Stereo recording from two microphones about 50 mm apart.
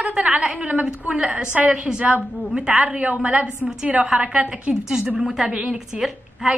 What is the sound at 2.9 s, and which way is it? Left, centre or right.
A woman's voice, right.